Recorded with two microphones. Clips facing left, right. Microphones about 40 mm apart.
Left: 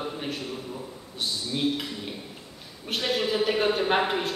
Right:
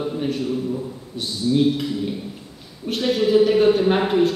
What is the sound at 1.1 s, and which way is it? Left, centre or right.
A man's voice, centre.